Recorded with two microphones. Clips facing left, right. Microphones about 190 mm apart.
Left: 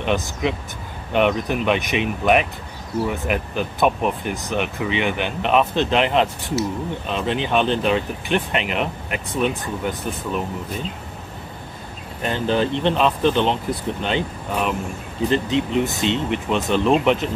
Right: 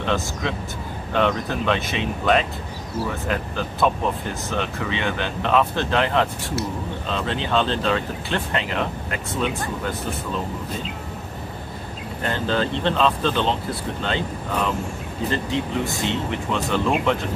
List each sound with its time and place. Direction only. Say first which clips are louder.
0.0 s speech: left 3 dB; 15° left (ahead or behind)
12.2 s speech: left 3 dB; 15° left (ahead or behind)